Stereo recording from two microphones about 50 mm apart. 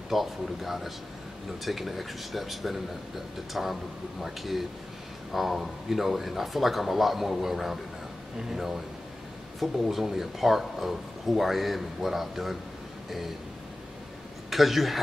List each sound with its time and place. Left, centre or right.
0.1 s speech: centre
14.5 s speech: centre